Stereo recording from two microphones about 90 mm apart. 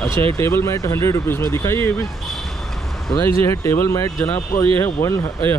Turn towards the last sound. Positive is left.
turn(degrees=30)  # may be behind; listen again after turning